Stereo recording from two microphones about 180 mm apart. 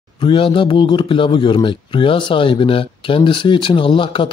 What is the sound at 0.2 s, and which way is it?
Speech, 30° left (ahead or behind).